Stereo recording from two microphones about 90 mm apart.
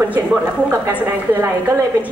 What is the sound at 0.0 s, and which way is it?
Speech, 20° right (ahead or behind).